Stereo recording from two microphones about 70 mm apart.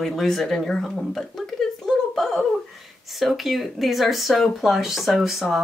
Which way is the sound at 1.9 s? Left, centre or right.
Centre.